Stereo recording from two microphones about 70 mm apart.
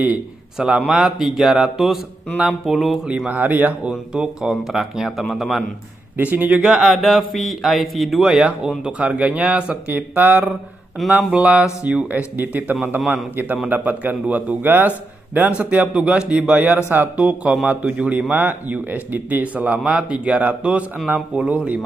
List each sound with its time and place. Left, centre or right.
0.6 s speech: centre
3.3 s a man's voice: right
3.9 s speech: centre
6.1 s a man's voice: right
6.6 s a man's voice: centre; by 17.1 s right
17.2 s a man's voice: centre